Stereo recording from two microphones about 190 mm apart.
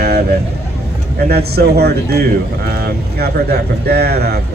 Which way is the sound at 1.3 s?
55° right (ahead or behind).